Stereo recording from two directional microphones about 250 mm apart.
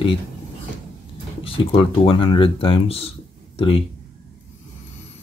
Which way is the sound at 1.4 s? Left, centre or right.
Left.